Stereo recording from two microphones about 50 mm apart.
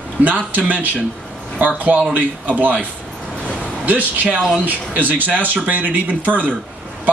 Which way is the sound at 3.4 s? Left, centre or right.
Left.